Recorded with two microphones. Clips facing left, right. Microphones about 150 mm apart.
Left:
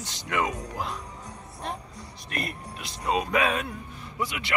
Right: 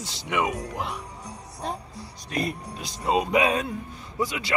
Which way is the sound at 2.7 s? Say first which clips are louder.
Right 1 dB; 35° right (ahead or behind).